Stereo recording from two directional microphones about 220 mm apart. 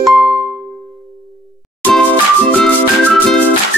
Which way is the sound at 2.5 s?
5° left (ahead or behind).